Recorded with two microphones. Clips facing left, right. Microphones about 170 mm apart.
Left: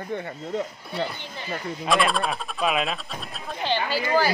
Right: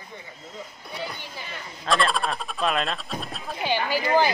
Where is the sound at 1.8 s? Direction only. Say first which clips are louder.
Left 1 dB; centre (ahead or behind).